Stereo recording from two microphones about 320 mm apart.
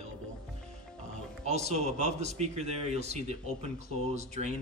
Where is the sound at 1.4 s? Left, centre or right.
Right.